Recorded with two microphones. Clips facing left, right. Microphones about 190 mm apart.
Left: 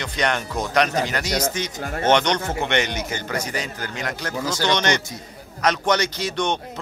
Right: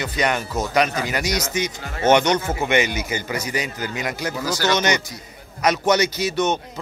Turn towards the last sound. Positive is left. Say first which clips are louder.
# right 3 dB
turn(degrees=-5)  # may be behind; listen again after turning